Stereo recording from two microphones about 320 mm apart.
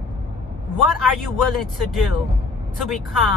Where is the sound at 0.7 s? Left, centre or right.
Centre.